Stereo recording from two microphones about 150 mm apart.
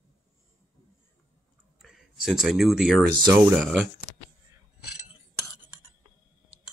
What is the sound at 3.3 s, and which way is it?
Speech, 10° right (ahead or behind).